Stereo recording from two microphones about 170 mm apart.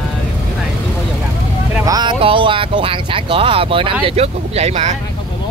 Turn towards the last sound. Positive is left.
turn(degrees=-40)  # may be behind; listen again after turning